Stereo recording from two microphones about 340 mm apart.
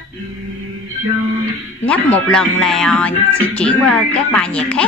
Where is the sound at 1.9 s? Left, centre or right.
Centre.